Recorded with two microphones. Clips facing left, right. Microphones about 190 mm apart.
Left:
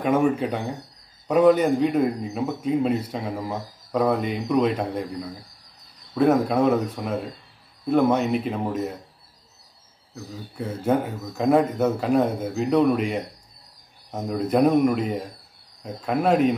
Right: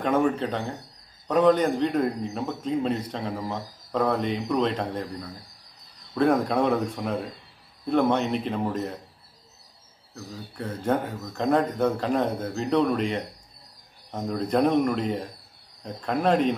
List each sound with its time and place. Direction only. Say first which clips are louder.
0.0 s a man's voice: left 2 dB; 10° left (ahead or behind)
10.1 s a man's voice: left 2 dB; 5° left (ahead or behind)